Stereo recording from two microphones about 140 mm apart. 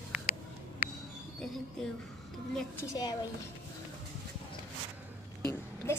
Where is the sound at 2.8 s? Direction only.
25° left (ahead or behind).